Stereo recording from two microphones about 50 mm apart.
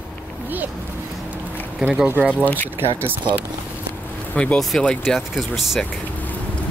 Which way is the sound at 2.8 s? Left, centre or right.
Right.